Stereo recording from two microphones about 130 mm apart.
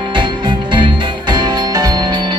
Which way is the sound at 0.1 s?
35° right (ahead or behind).